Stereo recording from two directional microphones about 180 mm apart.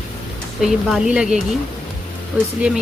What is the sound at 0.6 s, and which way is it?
Speech, centre (ahead or behind).